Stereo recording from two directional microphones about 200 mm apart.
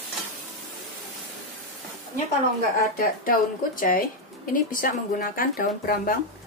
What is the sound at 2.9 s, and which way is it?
Speech, 45° left (ahead or behind).